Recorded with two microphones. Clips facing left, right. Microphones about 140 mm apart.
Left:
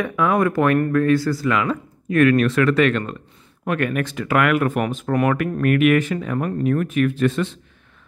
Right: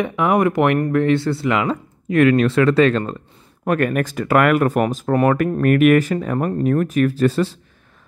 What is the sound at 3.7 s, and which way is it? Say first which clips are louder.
Speech: right 3 dB; 40° right (ahead or behind).